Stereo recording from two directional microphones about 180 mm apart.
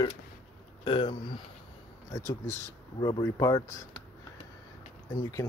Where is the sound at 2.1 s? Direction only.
15° left (ahead or behind).